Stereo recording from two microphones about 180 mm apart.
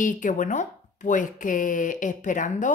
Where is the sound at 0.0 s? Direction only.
45° left (ahead or behind).